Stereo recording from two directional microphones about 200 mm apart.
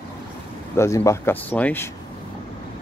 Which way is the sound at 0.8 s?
15° left (ahead or behind).